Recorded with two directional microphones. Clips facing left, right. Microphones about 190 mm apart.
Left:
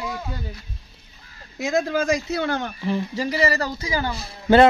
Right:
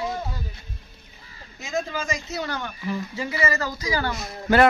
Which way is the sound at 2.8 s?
30° left (ahead or behind).